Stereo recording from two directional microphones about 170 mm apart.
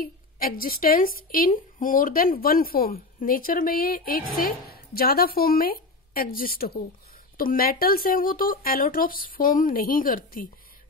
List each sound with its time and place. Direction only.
0.0 s speech: 55° left (ahead or behind)